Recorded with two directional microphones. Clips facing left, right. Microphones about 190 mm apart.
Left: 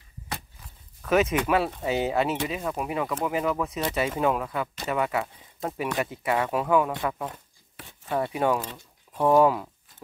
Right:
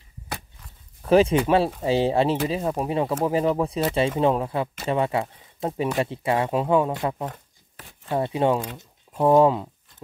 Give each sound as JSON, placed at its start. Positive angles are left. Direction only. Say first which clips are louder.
{"t": 1.0, "sound": "speech", "louder": "right 5 dB", "side_deg": -30}